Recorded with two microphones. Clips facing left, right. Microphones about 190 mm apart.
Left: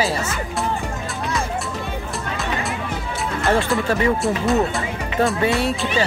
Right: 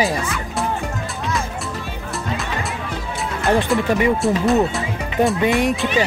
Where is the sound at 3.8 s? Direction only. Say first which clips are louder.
Right 2 dB; 15° right (ahead or behind).